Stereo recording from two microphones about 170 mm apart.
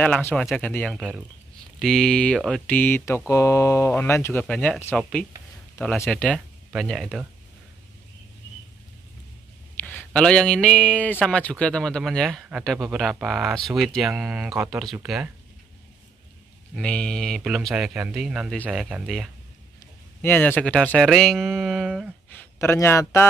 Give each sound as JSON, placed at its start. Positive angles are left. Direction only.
{"t": 0.0, "sound": "speech", "side_deg": 10}
{"t": 6.1, "sound": "speech", "side_deg": 5}
{"t": 9.8, "sound": "speech", "side_deg": 10}
{"t": 16.7, "sound": "speech", "side_deg": 5}
{"t": 20.2, "sound": "speech", "side_deg": 10}
{"t": 22.3, "sound": "a man's voice", "side_deg": 10}